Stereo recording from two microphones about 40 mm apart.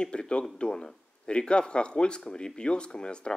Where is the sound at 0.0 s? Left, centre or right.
Left.